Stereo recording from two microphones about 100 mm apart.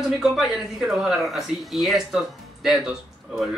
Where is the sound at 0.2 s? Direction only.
5° right (ahead or behind).